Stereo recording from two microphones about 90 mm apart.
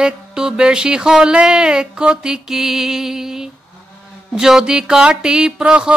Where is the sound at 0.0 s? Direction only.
10° right (ahead or behind).